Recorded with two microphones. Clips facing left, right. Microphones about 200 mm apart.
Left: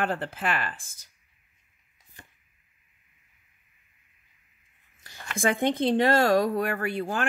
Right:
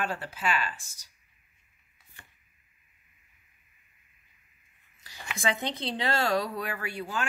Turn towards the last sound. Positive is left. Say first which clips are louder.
# left 6 dB
turn(degrees=50)  # may be behind; listen again after turning